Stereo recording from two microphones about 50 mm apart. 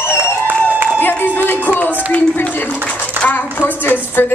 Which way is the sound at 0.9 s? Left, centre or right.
Left.